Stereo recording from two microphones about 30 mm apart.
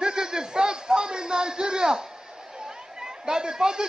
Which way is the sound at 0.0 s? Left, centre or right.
Right.